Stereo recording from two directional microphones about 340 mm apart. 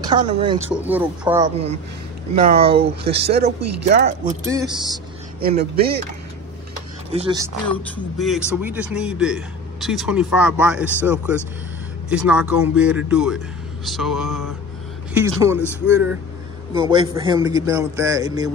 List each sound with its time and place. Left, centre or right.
0.0 s a man's voice: centre
2.5 s speech: right
4.5 s a man's voice: centre
5.4 s speech: right
7.1 s a man's voice: centre
7.9 s a man's voice: centre